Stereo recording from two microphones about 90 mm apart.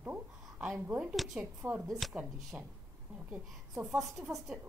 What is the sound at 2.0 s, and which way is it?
Speech, centre (ahead or behind).